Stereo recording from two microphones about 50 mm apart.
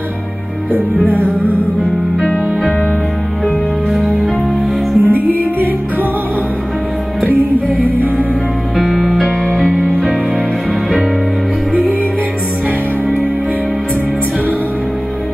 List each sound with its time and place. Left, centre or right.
3.9 s music: centre
5.0 s music: right
8.7 s music: centre